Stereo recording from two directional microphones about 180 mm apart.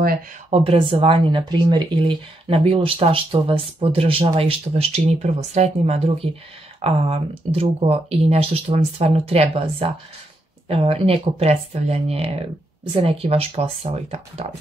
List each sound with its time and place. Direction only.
0.5 s speech: 30° right (ahead or behind)